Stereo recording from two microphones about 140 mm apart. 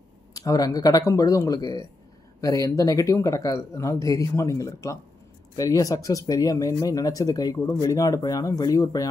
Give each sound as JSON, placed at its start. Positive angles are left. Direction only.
{"t": 0.3, "sound": "speech", "side_deg": 25}